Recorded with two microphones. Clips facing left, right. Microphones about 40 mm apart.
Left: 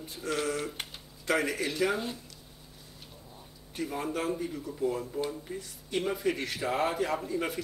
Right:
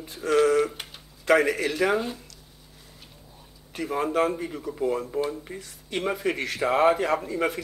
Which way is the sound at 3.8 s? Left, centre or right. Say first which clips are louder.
Right 8 dB; right.